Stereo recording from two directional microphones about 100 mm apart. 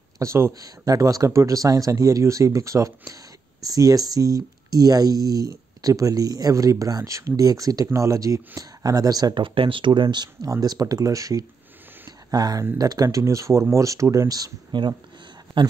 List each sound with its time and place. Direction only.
0.2 s speech: 30° right (ahead or behind)
15.6 s speech: 55° right (ahead or behind)